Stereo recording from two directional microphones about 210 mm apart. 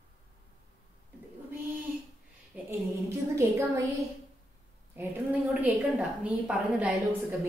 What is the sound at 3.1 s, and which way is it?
A woman's voice, 15° right (ahead or behind).